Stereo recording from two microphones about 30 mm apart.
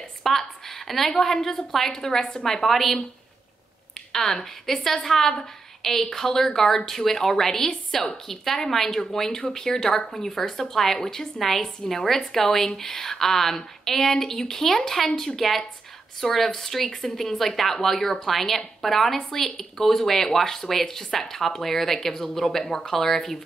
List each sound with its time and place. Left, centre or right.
0.2 s a sound: centre
1.1 s a woman's voice: centre
4.1 s a woman's voice: centre